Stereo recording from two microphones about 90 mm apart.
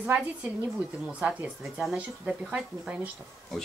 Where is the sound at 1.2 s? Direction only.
15° right (ahead or behind).